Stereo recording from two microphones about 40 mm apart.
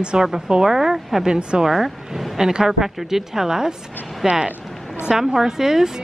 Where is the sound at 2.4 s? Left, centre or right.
Centre.